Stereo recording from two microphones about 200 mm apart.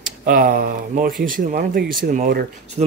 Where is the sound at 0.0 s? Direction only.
45° right (ahead or behind).